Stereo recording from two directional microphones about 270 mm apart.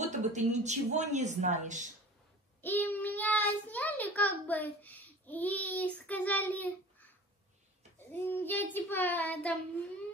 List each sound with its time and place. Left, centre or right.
0.0 s speech: right
2.6 s a child's voice: centre
8.1 s child singing: centre